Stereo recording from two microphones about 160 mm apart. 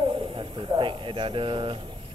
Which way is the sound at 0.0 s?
35° right (ahead or behind).